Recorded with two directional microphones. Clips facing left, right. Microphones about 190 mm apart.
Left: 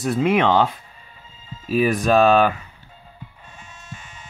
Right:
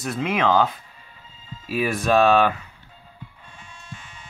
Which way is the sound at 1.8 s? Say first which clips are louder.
Left 5 dB; 15° left (ahead or behind).